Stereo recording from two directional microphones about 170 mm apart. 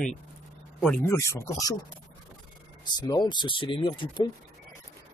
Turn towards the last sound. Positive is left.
turn(degrees=30)  # may be behind; listen again after turning